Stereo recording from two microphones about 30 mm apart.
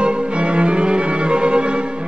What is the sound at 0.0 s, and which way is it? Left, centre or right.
Music, right.